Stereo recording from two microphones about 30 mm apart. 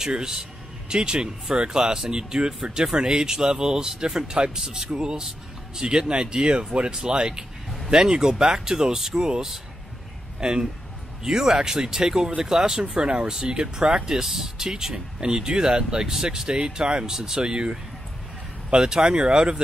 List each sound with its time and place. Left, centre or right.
0.1 s speech: right
10.4 s speech: right